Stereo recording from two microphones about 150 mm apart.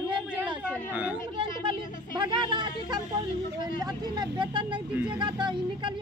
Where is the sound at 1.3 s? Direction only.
35° right (ahead or behind).